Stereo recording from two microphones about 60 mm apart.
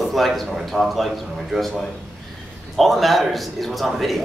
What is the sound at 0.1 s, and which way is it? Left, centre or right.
A man's voice, centre.